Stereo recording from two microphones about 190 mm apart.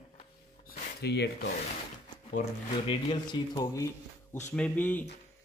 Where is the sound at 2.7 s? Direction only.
25° left (ahead or behind); by 5.1 s 10° left (ahead or behind).